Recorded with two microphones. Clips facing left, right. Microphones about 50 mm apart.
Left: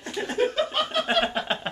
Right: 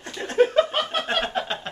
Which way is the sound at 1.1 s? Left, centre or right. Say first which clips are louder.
Left 1 dB; centre.